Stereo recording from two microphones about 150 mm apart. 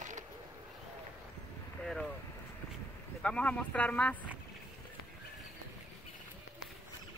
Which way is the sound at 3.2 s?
5° left (ahead or behind).